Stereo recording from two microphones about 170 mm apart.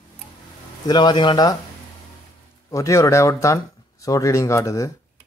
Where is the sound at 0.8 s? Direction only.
25° left (ahead or behind).